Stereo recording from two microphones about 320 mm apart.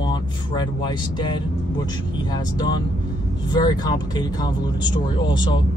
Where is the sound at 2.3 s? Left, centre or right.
Centre.